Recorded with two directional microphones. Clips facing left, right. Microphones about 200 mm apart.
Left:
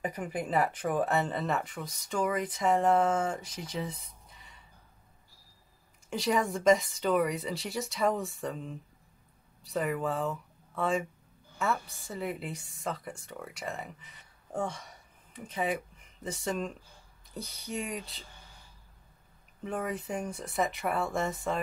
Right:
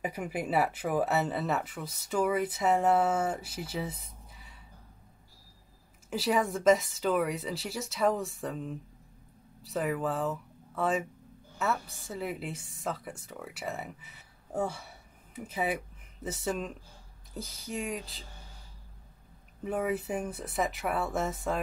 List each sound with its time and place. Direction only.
0.0 s speech: 10° right (ahead or behind)
6.0 s a woman's voice: 5° right (ahead or behind)
19.6 s speech: 5° right (ahead or behind)